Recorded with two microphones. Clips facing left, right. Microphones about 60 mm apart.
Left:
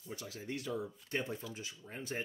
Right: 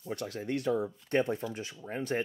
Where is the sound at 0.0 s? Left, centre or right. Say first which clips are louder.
Right 9 dB; right.